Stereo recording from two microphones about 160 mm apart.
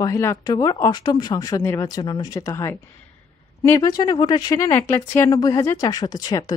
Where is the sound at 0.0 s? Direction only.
20° left (ahead or behind).